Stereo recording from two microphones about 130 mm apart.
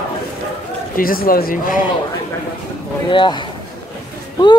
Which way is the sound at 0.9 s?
90° left.